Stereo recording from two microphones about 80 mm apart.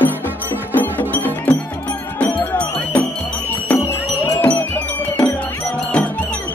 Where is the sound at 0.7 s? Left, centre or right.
Left.